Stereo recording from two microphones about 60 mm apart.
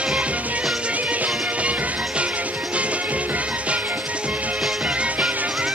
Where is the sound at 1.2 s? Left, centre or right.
Right.